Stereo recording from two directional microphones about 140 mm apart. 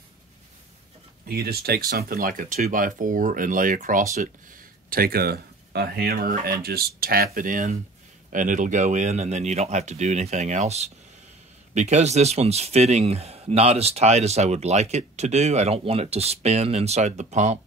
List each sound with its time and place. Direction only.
1.3 s speech: 90° right; by 4.0 s 70° right (ahead or behind)
4.8 s speech: 90° right; by 17.6 s 60° right (ahead or behind)